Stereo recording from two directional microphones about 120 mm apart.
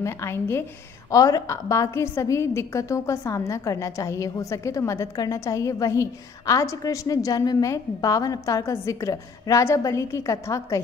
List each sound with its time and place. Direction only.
0.0 s a woman's voice: 20° left (ahead or behind)